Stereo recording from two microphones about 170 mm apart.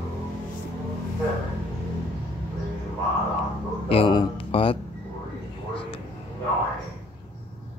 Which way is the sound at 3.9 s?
30° left (ahead or behind).